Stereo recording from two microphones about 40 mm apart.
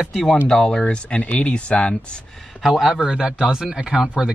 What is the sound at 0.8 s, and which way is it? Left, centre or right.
Speech, left.